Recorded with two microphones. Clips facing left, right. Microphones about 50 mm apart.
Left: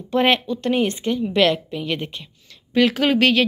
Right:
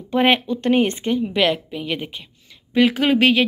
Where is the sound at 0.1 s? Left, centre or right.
Right.